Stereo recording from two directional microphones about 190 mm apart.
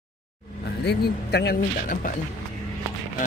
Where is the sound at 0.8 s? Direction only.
60° left (ahead or behind).